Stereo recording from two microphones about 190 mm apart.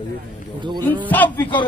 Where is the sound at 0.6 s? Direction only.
25° right (ahead or behind).